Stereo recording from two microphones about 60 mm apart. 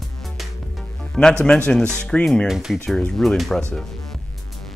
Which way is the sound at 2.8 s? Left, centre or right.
Centre.